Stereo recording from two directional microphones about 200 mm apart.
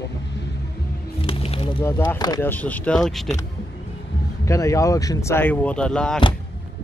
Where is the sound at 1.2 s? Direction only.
30° left (ahead or behind).